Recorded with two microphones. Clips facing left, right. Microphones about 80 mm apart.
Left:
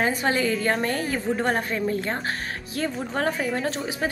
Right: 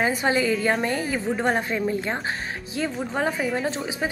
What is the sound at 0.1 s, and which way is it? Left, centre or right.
A woman's voice, centre.